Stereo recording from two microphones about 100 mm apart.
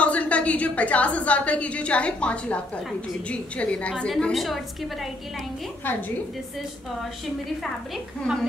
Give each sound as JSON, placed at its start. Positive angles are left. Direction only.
{"t": 0.0, "sound": "a woman's voice", "side_deg": 15}
{"t": 4.1, "sound": "a woman's voice", "side_deg": 0}
{"t": 5.9, "sound": "a woman's voice", "side_deg": 20}